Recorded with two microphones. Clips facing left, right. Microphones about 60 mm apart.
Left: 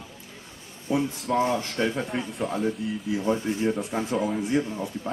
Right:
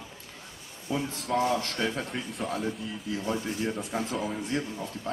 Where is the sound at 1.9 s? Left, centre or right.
Centre.